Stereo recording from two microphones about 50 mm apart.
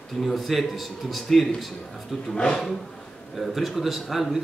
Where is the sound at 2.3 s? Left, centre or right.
Centre.